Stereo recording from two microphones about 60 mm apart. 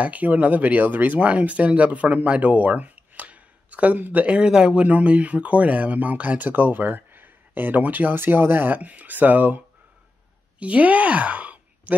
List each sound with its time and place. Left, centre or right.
0.0 s speech: right
4.4 s speech: centre; by 9.6 s right
10.6 s speech: right